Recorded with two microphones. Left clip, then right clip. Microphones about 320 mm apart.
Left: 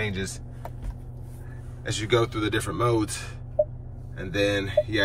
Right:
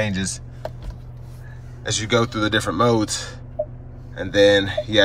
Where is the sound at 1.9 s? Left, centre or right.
Centre.